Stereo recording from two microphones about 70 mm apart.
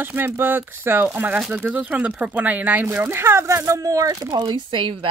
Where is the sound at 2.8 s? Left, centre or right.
Right.